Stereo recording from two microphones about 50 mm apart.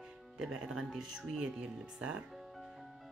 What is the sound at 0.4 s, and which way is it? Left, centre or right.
Speech, centre.